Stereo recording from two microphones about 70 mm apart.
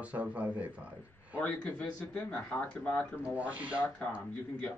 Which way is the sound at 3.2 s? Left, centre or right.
Right.